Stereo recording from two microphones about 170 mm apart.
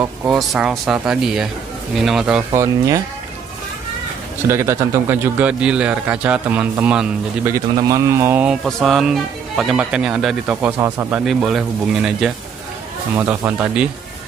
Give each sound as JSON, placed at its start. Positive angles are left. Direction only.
{"t": 0.3, "sound": "speech", "side_deg": 0}
{"t": 2.5, "sound": "a man's voice", "side_deg": -15}
{"t": 4.5, "sound": "a man's voice", "side_deg": -15}
{"t": 8.5, "sound": "a man's voice", "side_deg": 0}